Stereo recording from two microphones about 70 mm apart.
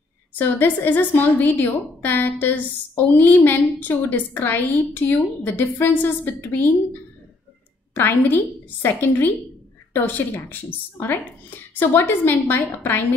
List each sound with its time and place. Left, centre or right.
0.3 s a woman's voice: left